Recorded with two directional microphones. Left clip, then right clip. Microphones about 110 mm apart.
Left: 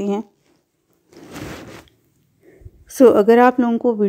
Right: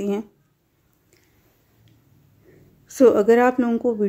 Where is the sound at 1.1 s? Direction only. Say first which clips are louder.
Left 17 dB; 45° left (ahead or behind).